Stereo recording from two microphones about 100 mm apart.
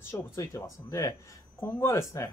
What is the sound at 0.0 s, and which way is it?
Speech, 25° left (ahead or behind).